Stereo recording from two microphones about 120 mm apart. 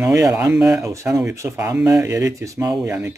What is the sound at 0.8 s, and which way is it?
Speech, 25° right (ahead or behind).